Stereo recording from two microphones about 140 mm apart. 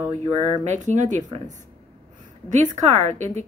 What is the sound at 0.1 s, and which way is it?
A woman's voice, 50° right (ahead or behind).